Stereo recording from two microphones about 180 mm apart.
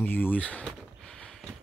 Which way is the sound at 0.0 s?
10° left (ahead or behind).